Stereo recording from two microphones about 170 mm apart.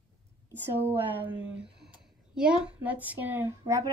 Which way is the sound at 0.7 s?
10° right (ahead or behind).